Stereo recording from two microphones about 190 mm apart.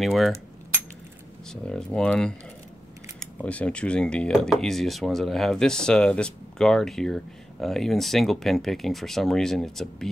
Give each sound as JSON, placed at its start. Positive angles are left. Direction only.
{"t": 0.0, "sound": "speech", "side_deg": 0}
{"t": 1.5, "sound": "speech", "side_deg": 5}